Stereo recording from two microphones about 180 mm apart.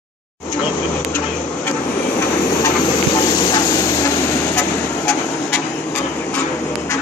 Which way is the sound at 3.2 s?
25° left (ahead or behind).